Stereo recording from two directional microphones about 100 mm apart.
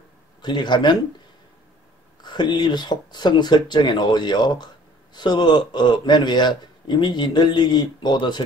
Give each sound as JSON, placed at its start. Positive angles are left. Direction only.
{"t": 0.4, "sound": "a man's voice", "side_deg": 45}
{"t": 2.2, "sound": "a man's voice", "side_deg": 50}